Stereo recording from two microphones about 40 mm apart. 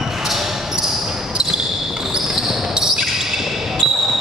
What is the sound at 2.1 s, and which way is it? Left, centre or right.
Basketball bounce, centre.